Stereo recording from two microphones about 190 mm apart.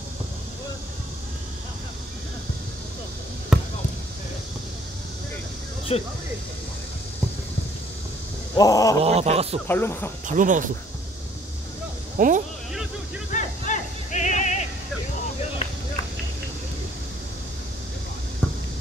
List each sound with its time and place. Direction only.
3.5 s basketball bounce: 5° right (ahead or behind)
5.9 s speech: 30° left (ahead or behind)
8.5 s speech: 20° left (ahead or behind)
9.0 s speech: 35° right (ahead or behind)
9.7 s speech: 10° left (ahead or behind)
10.2 s speech: 45° right (ahead or behind)
12.2 s speech: 45° right (ahead or behind)
13.3 s a sound: 40° left (ahead or behind)